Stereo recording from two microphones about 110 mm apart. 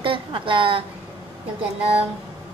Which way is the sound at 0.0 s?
50° right (ahead or behind).